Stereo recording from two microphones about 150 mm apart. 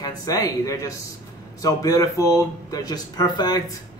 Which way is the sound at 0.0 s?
25° left (ahead or behind).